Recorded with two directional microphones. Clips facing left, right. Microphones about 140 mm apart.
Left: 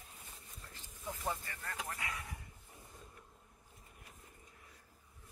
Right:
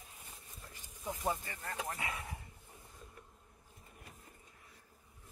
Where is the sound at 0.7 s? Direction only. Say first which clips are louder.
Right 3 dB; 15° right (ahead or behind).